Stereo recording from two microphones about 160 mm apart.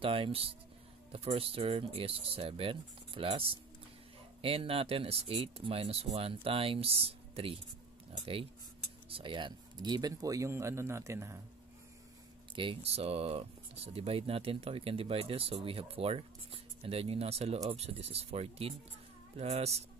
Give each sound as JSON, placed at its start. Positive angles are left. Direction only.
{"t": 0.0, "sound": "speech", "side_deg": -35}
{"t": 9.1, "sound": "speech", "side_deg": -30}
{"t": 12.5, "sound": "speech", "side_deg": -35}